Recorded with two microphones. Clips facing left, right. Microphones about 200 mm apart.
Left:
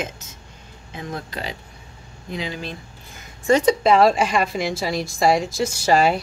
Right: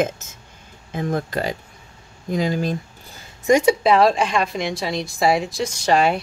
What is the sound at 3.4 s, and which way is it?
Speech, 15° right (ahead or behind).